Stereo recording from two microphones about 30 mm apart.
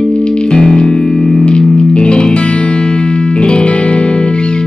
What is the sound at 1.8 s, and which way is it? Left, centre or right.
Music, left.